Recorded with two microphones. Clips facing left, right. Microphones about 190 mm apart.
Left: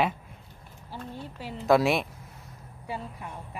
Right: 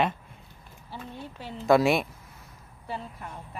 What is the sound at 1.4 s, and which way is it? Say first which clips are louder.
Speech: right 1 dB; centre (ahead or behind).